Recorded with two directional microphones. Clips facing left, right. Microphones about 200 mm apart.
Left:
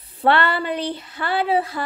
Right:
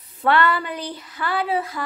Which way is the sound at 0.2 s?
30° left (ahead or behind).